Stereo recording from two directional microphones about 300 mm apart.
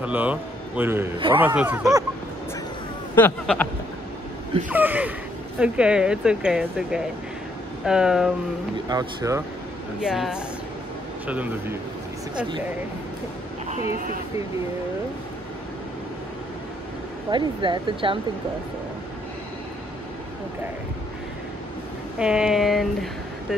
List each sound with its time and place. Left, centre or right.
0.0 s a man's voice: centre
3.2 s speech: centre
4.6 s speech: centre
8.7 s a man's voice: centre
9.9 s speech: centre
17.3 s a man's voice: centre
22.2 s speech: centre